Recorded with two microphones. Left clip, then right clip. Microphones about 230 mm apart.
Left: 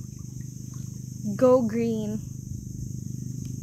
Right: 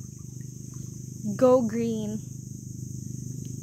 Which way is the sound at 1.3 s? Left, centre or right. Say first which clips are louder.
Left 1 dB; centre.